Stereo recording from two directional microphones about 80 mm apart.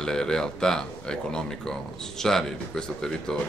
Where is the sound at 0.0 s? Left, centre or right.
Centre.